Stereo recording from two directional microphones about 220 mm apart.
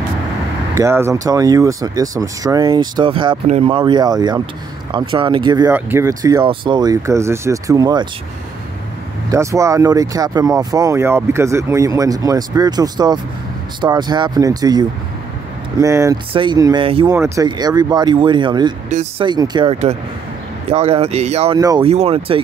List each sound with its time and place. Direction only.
0.7 s speech: 10° right (ahead or behind)
5.7 s speech: 10° right (ahead or behind)
9.3 s speech: 15° right (ahead or behind)
18.9 s speech: 35° right (ahead or behind)
19.2 s speech: 20° right (ahead or behind)
21.5 s speech: 20° right (ahead or behind)